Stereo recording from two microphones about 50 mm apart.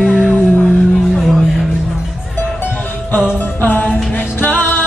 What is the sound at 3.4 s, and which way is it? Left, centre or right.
Music, left.